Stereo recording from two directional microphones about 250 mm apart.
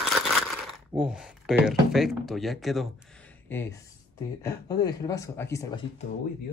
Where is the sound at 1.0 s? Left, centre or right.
Centre.